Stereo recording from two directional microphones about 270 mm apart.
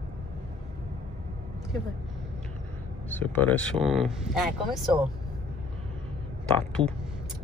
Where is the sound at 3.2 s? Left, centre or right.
Centre.